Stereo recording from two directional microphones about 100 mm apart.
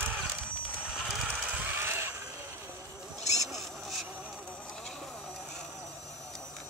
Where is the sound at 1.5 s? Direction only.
20° right (ahead or behind).